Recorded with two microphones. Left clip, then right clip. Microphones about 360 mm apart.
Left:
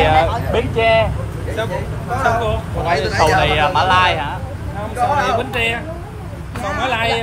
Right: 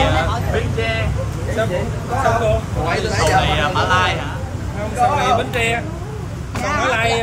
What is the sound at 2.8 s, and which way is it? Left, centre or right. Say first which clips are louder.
Speech: left 4 dB; left.